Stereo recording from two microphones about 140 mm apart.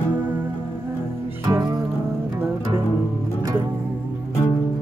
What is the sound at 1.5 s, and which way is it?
Music, 30° right (ahead or behind).